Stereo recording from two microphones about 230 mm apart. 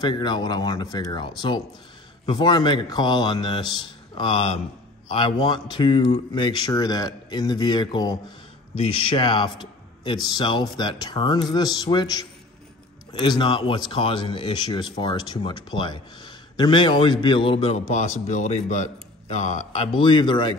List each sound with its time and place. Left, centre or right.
0.0 s speech: centre
20.0 s speech: left